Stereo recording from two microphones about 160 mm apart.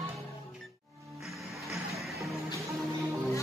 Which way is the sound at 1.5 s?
Centre (ahead or behind).